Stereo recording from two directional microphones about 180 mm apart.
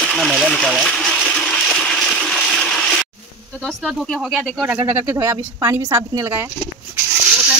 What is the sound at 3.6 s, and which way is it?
Speech, 5° right (ahead or behind).